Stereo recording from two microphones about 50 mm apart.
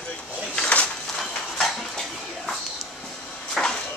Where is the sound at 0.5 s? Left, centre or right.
Left.